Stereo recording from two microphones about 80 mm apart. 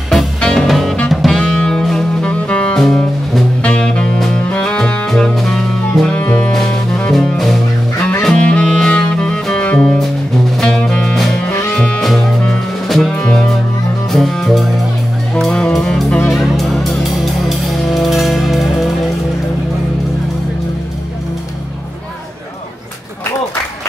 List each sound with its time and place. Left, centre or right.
0.4 s music: centre
6.1 s music: centre
16.3 s music: centre